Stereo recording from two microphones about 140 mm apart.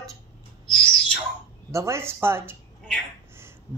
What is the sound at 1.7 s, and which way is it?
Speech, 20° right (ahead or behind).